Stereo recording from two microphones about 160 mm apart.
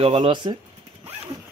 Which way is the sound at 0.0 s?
35° right (ahead or behind).